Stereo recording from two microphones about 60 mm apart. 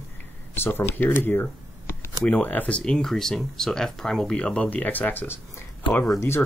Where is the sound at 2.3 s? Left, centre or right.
Left.